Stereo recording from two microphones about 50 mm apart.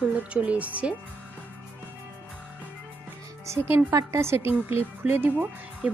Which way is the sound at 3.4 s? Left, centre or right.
Right.